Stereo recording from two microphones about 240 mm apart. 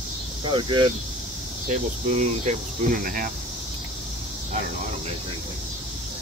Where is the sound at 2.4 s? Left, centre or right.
Right.